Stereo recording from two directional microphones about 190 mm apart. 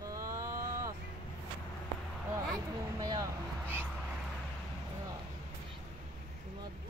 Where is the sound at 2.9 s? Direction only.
20° right (ahead or behind).